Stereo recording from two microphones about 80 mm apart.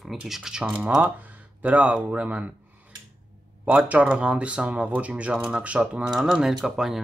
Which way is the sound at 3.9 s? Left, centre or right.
Centre.